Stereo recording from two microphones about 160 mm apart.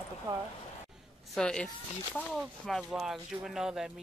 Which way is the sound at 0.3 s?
25° right (ahead or behind).